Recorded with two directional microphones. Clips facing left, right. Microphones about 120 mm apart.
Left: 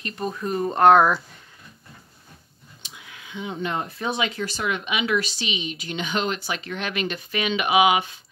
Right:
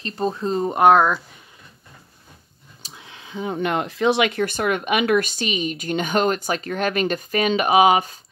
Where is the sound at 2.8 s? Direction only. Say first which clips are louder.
Right 2 dB; 30° right (ahead or behind).